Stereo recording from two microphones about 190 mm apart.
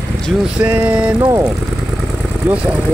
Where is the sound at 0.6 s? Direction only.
10° right (ahead or behind).